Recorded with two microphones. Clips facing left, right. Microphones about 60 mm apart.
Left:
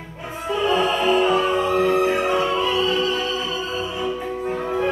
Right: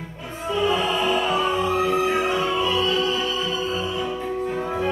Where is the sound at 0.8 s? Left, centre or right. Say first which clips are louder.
Left 4 dB; left.